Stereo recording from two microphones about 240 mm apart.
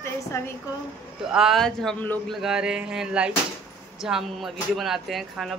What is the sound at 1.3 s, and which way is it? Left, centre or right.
Speech, centre.